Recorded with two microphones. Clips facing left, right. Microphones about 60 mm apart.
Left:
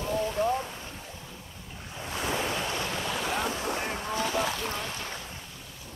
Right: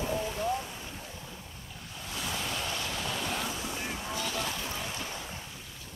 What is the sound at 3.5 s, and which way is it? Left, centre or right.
Boat, left.